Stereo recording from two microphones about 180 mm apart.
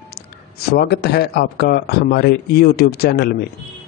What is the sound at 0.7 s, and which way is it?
Speech, 65° left (ahead or behind).